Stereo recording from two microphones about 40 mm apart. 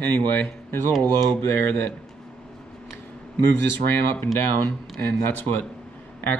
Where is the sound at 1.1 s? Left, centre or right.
Left.